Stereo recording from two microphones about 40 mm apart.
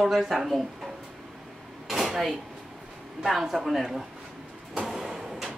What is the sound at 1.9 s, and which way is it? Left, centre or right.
Drawer open or close, centre.